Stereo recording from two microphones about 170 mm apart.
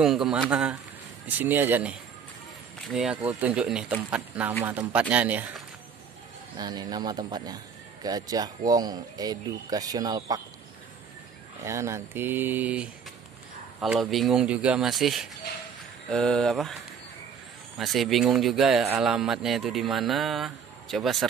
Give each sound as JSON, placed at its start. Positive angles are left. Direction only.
{"t": 0.0, "sound": "speech", "side_deg": -5}
{"t": 6.5, "sound": "speech", "side_deg": -25}
{"t": 11.6, "sound": "speech", "side_deg": -15}
{"t": 17.7, "sound": "speech", "side_deg": 0}